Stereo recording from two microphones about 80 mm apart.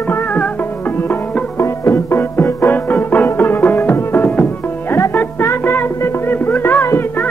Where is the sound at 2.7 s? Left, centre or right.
Left.